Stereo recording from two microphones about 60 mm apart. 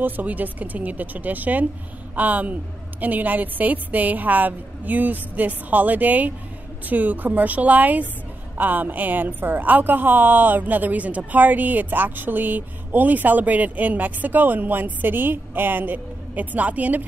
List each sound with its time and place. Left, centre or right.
0.0 s a woman's voice: right